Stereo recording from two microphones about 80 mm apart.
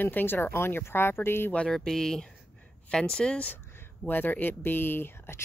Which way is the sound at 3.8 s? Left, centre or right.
Left.